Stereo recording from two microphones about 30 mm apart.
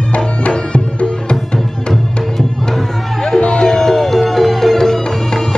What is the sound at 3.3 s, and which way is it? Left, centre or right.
Emergency vehicle, left.